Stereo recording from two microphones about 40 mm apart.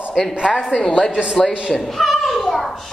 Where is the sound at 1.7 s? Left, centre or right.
Centre.